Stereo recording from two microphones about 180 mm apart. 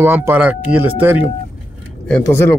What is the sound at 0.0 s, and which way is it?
Speech, 10° right (ahead or behind).